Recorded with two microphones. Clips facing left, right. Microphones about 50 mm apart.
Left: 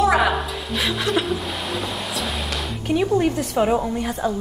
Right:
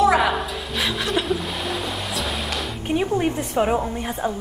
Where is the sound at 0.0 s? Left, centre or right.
Centre.